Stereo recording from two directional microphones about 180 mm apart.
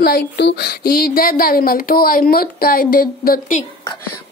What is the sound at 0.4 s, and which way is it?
Speech, 70° left (ahead or behind).